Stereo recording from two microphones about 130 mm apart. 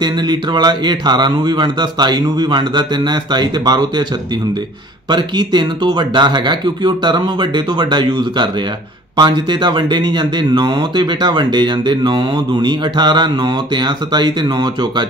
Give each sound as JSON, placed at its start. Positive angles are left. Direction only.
{"t": 0.0, "sound": "speech", "side_deg": -35}
{"t": 5.1, "sound": "speech", "side_deg": -35}